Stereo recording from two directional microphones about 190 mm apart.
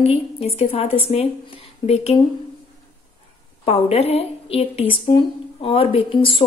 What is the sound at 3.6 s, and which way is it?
A woman's voice, 35° left (ahead or behind).